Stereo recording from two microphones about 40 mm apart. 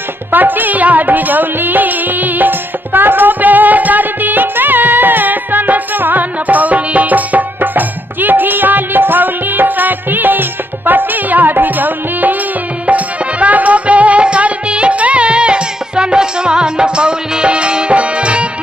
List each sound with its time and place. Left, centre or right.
0.3 s music: right
12.8 s music: right